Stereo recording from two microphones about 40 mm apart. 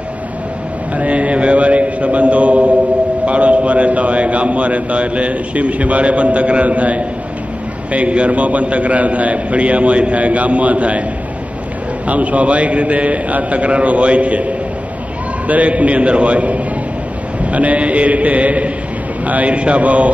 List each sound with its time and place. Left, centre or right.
0.9 s mantra: right
3.3 s a man's voice: right
12.1 s a man's voice: right